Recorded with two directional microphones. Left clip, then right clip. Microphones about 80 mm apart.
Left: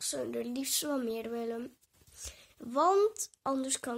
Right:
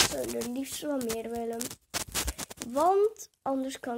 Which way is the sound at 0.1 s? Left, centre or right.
Left.